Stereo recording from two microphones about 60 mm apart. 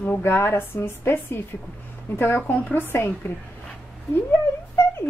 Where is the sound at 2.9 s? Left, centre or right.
Left.